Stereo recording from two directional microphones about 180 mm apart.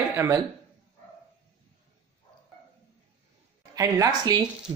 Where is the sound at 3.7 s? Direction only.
20° right (ahead or behind).